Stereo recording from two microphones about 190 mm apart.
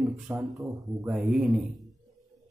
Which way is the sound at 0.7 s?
20° right (ahead or behind).